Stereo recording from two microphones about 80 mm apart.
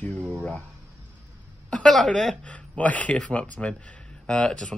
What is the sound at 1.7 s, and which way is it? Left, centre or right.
A woman's voice, centre.